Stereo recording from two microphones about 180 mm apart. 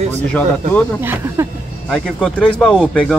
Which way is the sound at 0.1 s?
10° left (ahead or behind).